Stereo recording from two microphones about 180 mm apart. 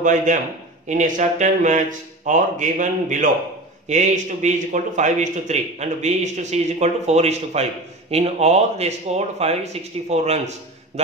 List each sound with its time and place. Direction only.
0.0 s a man's voice: 45° right (ahead or behind)